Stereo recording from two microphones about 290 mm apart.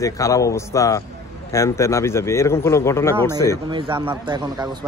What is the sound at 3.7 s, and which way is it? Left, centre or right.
Speech, centre.